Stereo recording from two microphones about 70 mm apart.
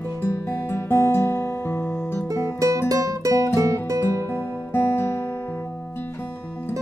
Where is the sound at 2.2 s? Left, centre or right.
Right.